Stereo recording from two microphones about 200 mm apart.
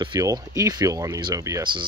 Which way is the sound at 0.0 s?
20° right (ahead or behind).